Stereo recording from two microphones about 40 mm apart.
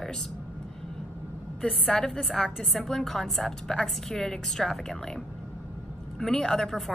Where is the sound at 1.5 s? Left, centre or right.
Left; by 3.5 s centre.